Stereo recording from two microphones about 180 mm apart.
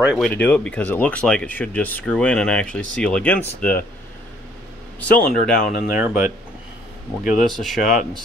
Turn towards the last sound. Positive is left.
turn(degrees=0)  # may be behind; listen again after turning